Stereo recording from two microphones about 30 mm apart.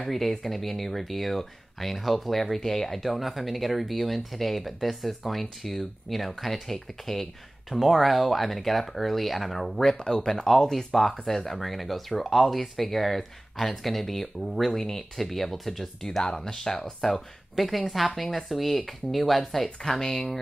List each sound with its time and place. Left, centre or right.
0.0 s speech: centre
3.0 s speech: centre
9.9 s speech: left
10.5 s speech: centre
11.0 s speech: centre
16.4 s speech: centre
17.0 s speech: centre